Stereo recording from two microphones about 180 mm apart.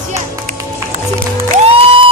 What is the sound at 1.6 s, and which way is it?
Music, 30° right (ahead or behind).